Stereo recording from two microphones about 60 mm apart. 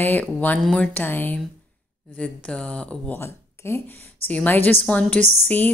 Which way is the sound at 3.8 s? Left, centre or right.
Left.